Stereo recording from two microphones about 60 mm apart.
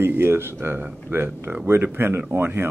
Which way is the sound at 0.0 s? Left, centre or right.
Right.